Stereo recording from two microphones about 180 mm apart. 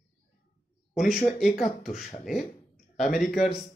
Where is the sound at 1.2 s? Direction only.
Centre (ahead or behind).